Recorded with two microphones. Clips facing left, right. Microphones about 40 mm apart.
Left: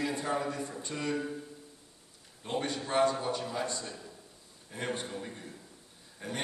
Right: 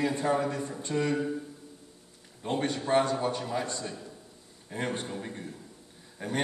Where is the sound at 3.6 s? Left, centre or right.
Right.